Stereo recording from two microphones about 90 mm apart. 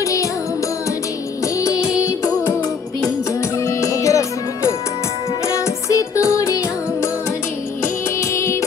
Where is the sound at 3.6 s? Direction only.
35° left (ahead or behind).